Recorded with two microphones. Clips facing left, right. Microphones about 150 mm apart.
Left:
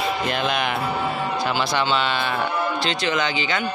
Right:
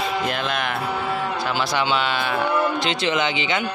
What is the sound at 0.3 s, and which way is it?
Speech, centre (ahead or behind).